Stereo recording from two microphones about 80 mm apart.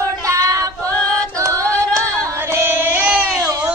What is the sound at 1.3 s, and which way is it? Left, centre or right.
Singing, right.